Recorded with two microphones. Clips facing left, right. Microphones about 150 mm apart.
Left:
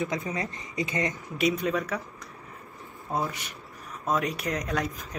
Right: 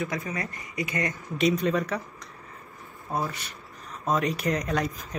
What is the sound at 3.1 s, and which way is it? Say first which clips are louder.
Speech: even; 15° left (ahead or behind).